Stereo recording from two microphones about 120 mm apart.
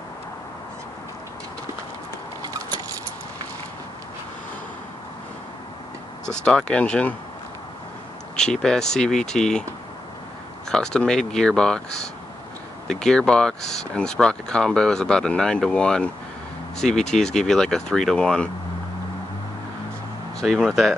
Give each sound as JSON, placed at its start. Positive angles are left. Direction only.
{"t": 2.4, "sound": "vehicle", "side_deg": -35}
{"t": 6.4, "sound": "speech", "side_deg": 10}
{"t": 8.4, "sound": "speech", "side_deg": 5}
{"t": 10.7, "sound": "speech", "side_deg": 5}
{"t": 12.8, "sound": "speech", "side_deg": 5}
{"t": 20.3, "sound": "speech", "side_deg": 5}